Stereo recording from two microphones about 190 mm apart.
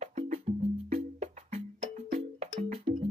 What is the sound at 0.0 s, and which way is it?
Music, 35° right (ahead or behind).